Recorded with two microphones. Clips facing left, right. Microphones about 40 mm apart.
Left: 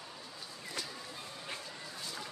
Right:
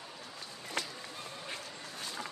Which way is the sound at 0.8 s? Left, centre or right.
Right.